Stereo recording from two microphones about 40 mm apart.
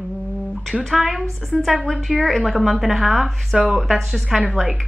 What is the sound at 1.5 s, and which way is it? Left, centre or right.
Speech, left.